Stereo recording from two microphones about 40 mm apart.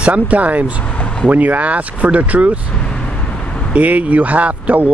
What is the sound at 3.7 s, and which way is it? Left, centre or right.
Speech, right.